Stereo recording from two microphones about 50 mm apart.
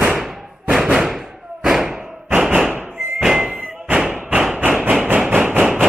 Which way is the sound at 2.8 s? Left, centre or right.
Right.